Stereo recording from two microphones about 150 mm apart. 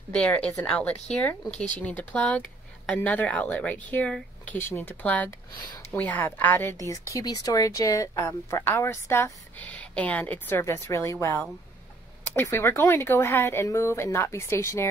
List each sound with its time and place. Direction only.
0.1 s speech: 10° left (ahead or behind)
5.6 s speech: 25° left (ahead or behind)
5.9 s speech: 10° left (ahead or behind)